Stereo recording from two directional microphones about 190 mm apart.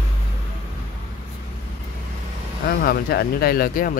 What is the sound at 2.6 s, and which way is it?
Speech, 55° left (ahead or behind).